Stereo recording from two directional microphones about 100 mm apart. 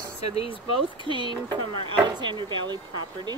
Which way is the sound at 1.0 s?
50° right (ahead or behind).